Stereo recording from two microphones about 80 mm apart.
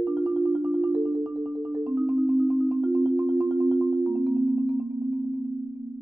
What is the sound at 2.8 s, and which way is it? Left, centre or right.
Marimba, right.